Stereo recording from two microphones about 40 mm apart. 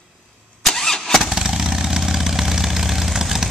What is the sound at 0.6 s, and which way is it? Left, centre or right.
Vehicle, centre.